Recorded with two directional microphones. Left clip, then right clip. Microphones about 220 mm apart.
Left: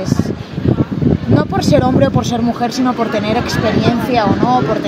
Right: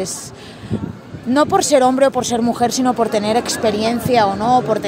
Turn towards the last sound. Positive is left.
turn(degrees=-55)  # may be behind; listen again after turning